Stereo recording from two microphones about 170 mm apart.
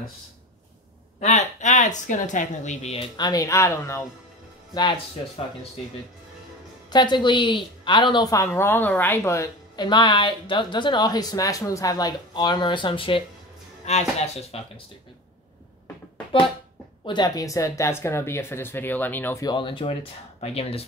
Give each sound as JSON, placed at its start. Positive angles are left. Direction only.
{"t": 1.2, "sound": "speech", "side_deg": 45}
{"t": 4.7, "sound": "speech", "side_deg": 30}
{"t": 6.9, "sound": "speech", "side_deg": 25}
{"t": 17.0, "sound": "speech", "side_deg": 25}
{"t": 19.4, "sound": "speech", "side_deg": 30}